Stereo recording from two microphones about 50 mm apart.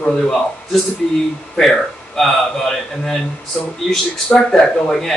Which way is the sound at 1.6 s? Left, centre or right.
Centre.